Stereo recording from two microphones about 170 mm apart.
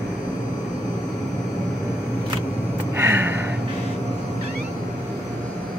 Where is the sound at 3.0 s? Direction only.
15° right (ahead or behind).